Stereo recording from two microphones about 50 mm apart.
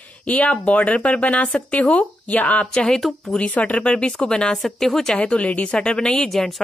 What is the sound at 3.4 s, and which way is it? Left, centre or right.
Speech, left.